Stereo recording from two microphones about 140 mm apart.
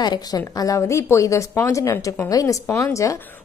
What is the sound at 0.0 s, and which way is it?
A woman's voice, 30° left (ahead or behind).